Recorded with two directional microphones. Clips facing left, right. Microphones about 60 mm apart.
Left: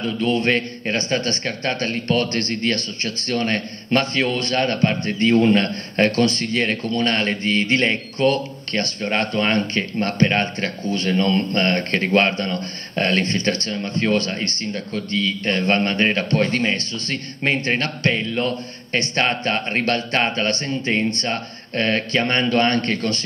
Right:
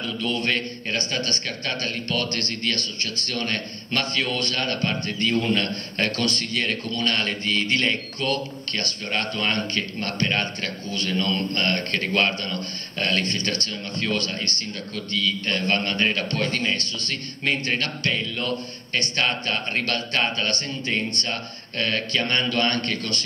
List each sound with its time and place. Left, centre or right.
0.0 s a man's voice: left